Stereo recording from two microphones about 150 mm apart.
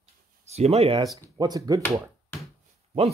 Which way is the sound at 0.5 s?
45° right (ahead or behind).